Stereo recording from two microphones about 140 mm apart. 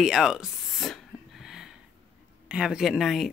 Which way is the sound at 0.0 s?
5° right (ahead or behind).